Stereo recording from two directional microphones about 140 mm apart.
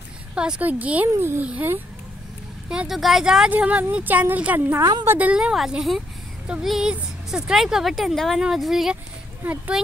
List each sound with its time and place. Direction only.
0.3 s speech: 5° right (ahead or behind)
4.8 s a woman's voice: 25° right (ahead or behind)
5.1 s a woman's voice: 10° right (ahead or behind)
9.4 s speech: 15° right (ahead or behind)